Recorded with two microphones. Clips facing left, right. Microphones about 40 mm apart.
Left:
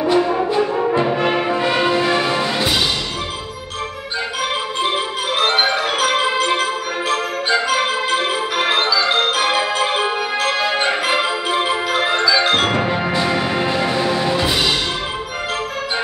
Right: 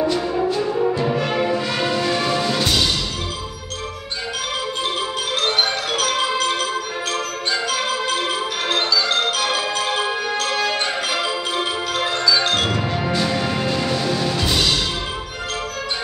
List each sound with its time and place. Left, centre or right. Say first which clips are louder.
0.0 s music: left 4 dB; left
4.8 s music: left 3 dB; left
9.4 s marimba: left 4 dB; left
10.4 s music: left 5 dB; left